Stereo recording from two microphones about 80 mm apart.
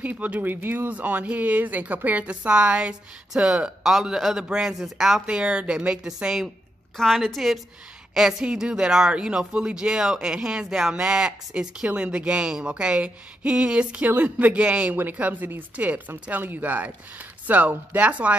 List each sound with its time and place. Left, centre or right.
0.0 s a woman's voice: centre